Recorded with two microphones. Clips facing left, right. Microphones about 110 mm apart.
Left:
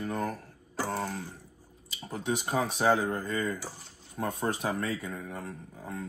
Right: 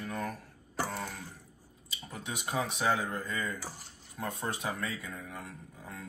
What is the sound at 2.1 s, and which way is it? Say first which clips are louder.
Speech: left 6 dB; 35° left (ahead or behind).